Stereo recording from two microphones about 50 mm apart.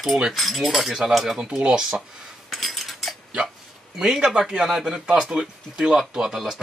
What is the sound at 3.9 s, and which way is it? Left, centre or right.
Speech, centre.